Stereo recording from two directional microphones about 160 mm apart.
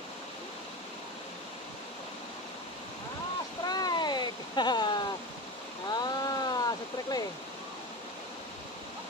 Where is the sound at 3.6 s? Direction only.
25° left (ahead or behind).